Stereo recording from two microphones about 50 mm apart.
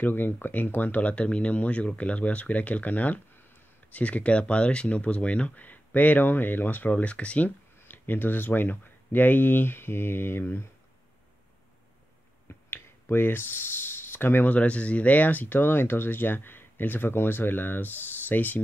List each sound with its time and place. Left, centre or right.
0.0 s speech: left
7.4 s speech: left
12.6 s a sound: left
14.5 s speech: left